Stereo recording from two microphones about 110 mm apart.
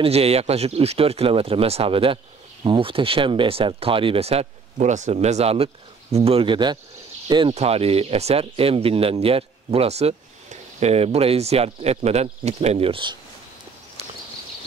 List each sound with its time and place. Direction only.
0.0 s speech: 65° right (ahead or behind); by 7.5 s 45° right (ahead or behind)
7.5 s speech: 70° right (ahead or behind); by 13.2 s 50° right (ahead or behind)